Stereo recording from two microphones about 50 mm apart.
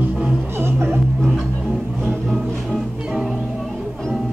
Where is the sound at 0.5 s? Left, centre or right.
Right.